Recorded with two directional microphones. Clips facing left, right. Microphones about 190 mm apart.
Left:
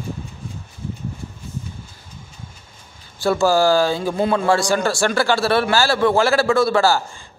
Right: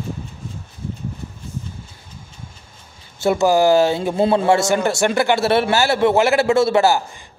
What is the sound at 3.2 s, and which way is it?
A man's voice, 20° right (ahead or behind).